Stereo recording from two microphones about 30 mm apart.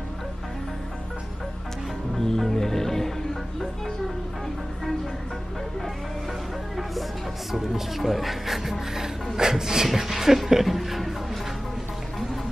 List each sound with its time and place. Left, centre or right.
2.1 s music: centre
8.0 s speech: centre
9.8 s speech: centre
10.6 s music: centre